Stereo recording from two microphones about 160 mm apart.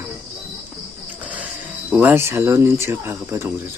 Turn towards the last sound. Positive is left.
turn(degrees=-15)  # may be behind; listen again after turning